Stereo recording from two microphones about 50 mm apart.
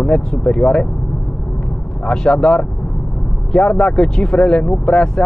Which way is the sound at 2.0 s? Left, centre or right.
Centre.